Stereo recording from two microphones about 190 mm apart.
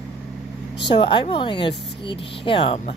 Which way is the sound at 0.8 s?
25° left (ahead or behind).